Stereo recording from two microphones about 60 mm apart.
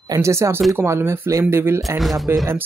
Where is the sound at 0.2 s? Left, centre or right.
Right.